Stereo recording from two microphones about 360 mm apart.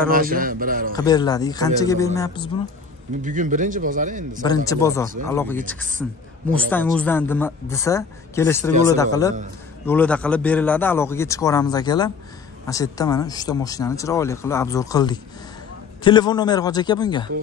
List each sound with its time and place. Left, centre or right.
0.0 s a man's voice: right
0.9 s speech: centre
3.2 s a man's voice: right
4.6 s a woman's voice: centre